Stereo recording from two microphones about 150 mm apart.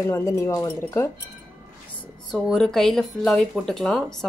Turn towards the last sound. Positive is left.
turn(degrees=0)  # may be behind; listen again after turning